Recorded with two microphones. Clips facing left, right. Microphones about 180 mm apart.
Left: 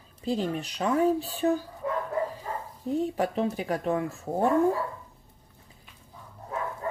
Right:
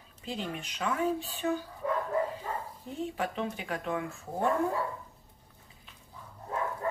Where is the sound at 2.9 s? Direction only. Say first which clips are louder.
Left 8 dB; 40° left (ahead or behind).